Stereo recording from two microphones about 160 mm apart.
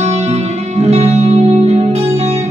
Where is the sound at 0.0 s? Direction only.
45° right (ahead or behind).